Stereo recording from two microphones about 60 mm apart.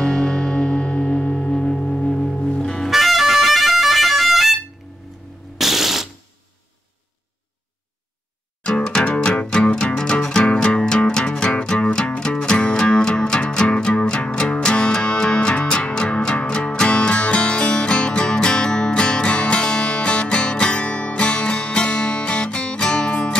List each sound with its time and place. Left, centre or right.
0.0 s music: centre
2.9 s music: centre
5.6 s ratchet: centre
8.6 s music: centre